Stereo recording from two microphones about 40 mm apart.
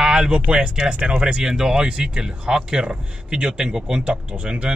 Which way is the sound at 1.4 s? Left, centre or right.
Centre.